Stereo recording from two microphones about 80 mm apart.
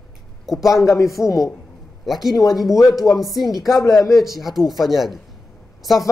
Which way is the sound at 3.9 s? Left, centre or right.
Left.